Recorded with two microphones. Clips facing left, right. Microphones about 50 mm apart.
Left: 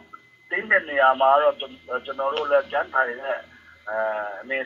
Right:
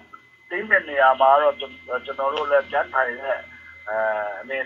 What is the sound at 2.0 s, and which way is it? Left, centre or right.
Speech, right.